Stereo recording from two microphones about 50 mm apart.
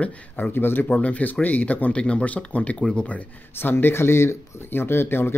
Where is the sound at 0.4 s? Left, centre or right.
Left.